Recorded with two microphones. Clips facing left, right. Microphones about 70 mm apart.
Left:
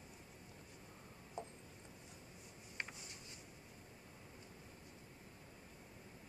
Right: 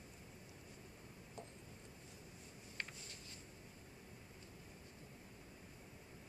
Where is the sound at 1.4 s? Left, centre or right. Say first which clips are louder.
Left 6 dB; left.